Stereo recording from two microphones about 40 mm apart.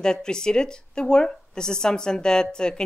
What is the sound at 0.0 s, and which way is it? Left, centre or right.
Speech, centre.